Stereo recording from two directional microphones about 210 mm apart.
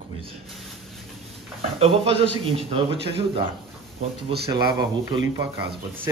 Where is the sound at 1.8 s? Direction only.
30° right (ahead or behind).